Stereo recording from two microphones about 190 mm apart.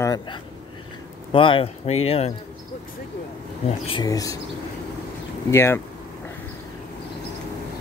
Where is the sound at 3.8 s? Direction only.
25° left (ahead or behind).